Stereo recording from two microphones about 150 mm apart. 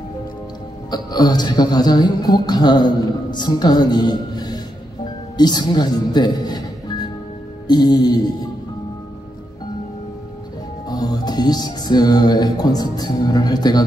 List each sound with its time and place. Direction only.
0.8 s a man's voice: 30° left (ahead or behind)
10.9 s a man's voice: 25° left (ahead or behind)